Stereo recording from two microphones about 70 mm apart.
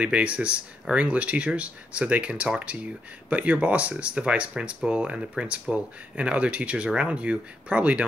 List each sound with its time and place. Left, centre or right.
0.0 s speech: centre